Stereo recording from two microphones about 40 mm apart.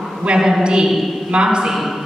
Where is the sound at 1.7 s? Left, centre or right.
Centre.